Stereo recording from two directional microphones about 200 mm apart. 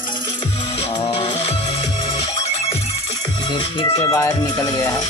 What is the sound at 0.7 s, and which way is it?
Music, 20° left (ahead or behind).